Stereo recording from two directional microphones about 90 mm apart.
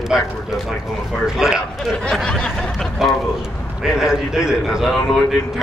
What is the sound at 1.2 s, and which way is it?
Speech, 5° right (ahead or behind).